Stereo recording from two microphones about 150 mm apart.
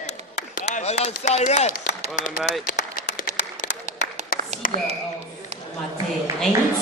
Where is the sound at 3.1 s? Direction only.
60° left (ahead or behind).